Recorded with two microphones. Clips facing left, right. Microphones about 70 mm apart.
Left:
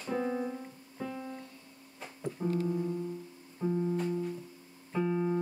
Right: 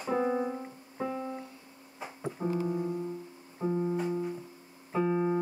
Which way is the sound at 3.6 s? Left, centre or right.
Right.